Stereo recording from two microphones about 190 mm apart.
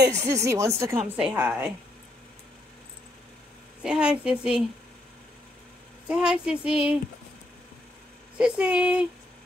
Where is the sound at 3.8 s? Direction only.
5° right (ahead or behind).